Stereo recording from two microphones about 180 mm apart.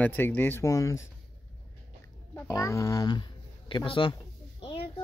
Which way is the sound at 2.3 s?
15° left (ahead or behind).